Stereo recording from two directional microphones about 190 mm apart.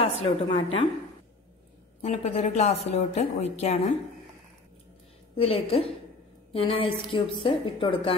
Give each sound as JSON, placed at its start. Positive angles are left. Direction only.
{"t": 0.2, "sound": "a woman's voice", "side_deg": 30}
{"t": 2.0, "sound": "a woman's voice", "side_deg": 35}
{"t": 5.3, "sound": "a woman's voice", "side_deg": 30}